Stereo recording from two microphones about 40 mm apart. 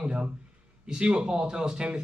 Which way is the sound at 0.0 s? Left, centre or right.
Right.